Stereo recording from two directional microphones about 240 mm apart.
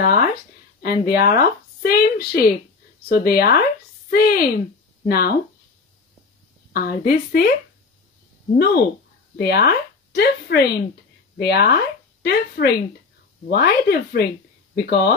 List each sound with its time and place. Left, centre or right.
0.0 s a sound: left
0.8 s speech: left
6.7 s speech: left
8.5 s speech: left